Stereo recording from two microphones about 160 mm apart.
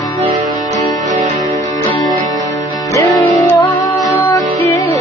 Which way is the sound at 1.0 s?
50° right (ahead or behind).